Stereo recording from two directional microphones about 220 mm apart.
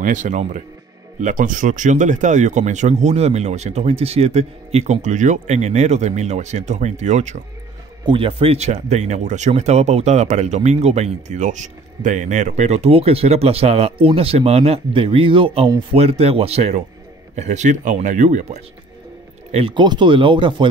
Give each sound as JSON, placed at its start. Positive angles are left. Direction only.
{"t": 0.0, "sound": "speech", "side_deg": -35}